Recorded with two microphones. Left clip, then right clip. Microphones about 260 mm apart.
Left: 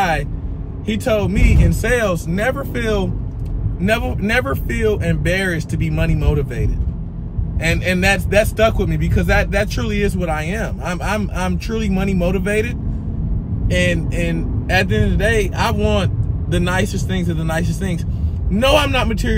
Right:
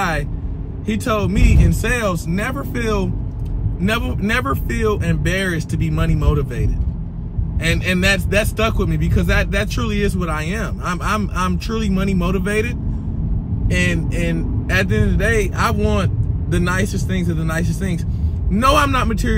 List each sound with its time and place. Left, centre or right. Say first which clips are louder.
1.0 s speech: left 2 dB; centre